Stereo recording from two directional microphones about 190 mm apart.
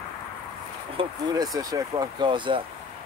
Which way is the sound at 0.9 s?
20° right (ahead or behind).